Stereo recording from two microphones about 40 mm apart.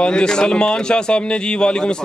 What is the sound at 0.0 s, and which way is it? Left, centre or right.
A man's voice, left.